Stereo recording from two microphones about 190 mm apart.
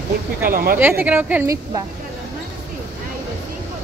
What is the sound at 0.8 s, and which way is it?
Speech, 10° right (ahead or behind).